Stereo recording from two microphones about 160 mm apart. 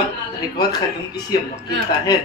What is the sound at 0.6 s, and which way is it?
Speech, 25° left (ahead or behind).